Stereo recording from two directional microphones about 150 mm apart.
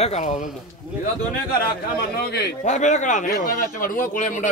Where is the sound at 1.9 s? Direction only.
90° left.